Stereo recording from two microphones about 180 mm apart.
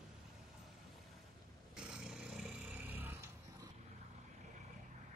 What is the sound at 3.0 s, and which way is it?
Dog, 10° right (ahead or behind).